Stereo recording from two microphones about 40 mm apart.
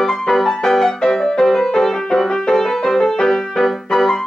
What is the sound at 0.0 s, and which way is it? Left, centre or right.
Music, centre.